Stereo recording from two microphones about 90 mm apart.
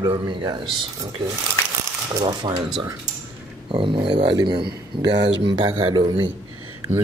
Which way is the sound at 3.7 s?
70° right (ahead or behind).